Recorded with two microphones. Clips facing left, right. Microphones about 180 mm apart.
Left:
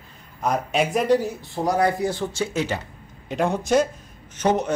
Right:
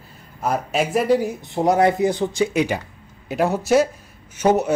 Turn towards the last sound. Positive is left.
turn(degrees=-10)  # may be behind; listen again after turning